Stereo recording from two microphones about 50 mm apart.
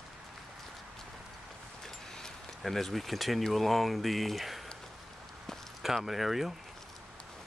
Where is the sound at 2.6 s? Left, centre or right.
Centre.